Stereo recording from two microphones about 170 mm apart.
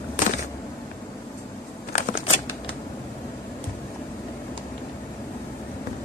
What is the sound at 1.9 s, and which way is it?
Shuffling cards, 55° left (ahead or behind).